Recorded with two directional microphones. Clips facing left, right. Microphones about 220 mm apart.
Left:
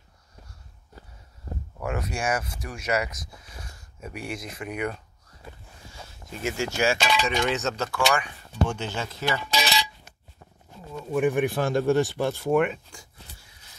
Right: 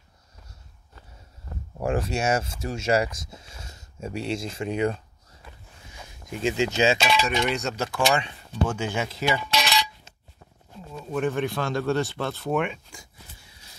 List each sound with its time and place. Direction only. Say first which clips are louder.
1.5 s a sound: left 4 dB; 35° left (ahead or behind)
1.8 s speech: right 5 dB; 30° right (ahead or behind)
5.9 s a sound: right 3 dB; 15° right (ahead or behind)
7.0 s speech: right 1 dB; centre (ahead or behind)
7.8 s speech: right 4 dB; 20° right (ahead or behind)
11.1 s speech: left 3 dB; 10° left (ahead or behind)